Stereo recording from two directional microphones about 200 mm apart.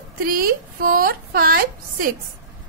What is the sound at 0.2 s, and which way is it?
Speech, 45° right (ahead or behind).